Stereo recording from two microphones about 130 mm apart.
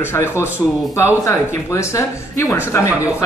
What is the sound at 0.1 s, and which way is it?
Speech, 20° left (ahead or behind).